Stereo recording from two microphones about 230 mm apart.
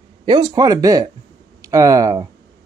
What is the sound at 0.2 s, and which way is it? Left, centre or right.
Speech, centre.